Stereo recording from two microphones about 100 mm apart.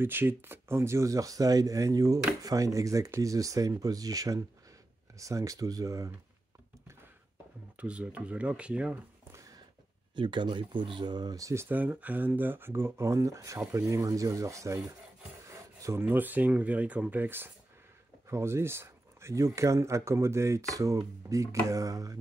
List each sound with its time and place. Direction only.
0.0 s speech: 20° right (ahead or behind)
7.7 s speech: 15° right (ahead or behind)
9.3 s a sound: 35° right (ahead or behind)
10.1 s speech: 55° right (ahead or behind); by 22.1 s 35° right (ahead or behind)